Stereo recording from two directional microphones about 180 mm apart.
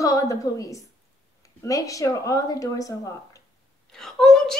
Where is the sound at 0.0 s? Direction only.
20° left (ahead or behind).